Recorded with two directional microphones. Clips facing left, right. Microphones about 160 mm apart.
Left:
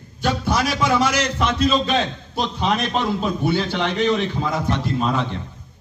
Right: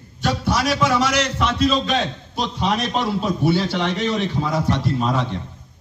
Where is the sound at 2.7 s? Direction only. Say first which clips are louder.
Even; 35° right (ahead or behind).